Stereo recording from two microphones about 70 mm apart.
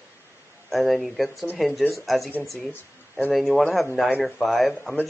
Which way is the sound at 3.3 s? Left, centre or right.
Centre.